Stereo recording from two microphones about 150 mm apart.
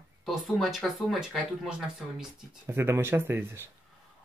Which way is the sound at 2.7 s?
15° right (ahead or behind).